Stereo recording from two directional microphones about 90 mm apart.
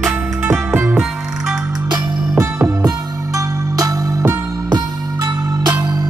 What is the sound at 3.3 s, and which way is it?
Music, 40° right (ahead or behind).